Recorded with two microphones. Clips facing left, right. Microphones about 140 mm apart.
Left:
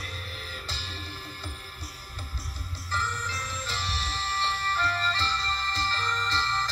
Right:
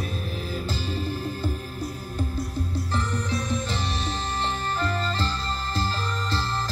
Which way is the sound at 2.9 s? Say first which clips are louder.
Even; 20° right (ahead or behind).